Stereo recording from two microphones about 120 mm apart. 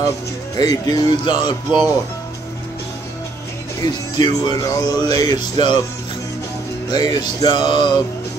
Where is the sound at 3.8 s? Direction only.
35° left (ahead or behind).